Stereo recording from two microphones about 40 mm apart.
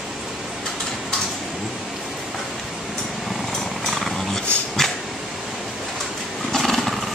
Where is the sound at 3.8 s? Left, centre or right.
Centre.